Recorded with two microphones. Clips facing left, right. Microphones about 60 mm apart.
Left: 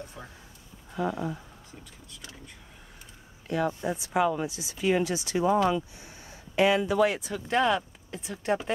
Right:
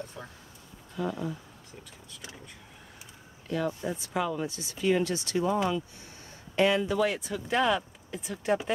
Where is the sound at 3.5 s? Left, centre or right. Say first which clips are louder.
Left 2 dB; centre.